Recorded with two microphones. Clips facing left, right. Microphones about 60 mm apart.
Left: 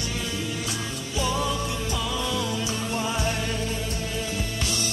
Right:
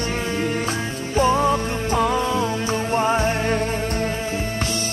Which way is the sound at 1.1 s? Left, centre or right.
Right.